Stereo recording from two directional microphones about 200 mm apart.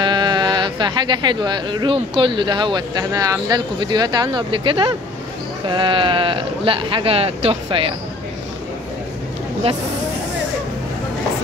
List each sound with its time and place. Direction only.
0.0 s speech: 20° right (ahead or behind)